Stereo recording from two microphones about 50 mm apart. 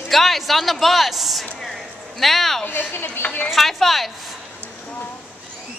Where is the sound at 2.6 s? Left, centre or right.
Left.